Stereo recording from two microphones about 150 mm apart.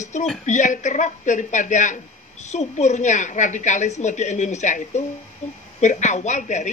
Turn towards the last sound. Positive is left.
turn(degrees=55)  # may be behind; listen again after turning